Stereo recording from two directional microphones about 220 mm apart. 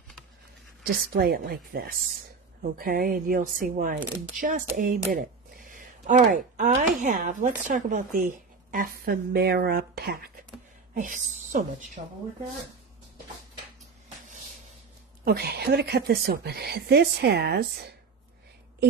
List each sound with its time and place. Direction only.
0.8 s a woman's voice: 45° right (ahead or behind)
15.2 s a woman's voice: 45° right (ahead or behind)